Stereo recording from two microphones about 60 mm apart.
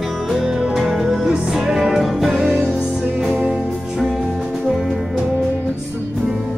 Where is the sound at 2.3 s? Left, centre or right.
Centre.